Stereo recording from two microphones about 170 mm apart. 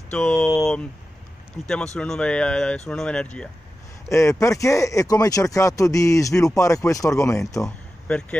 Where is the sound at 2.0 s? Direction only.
5° left (ahead or behind).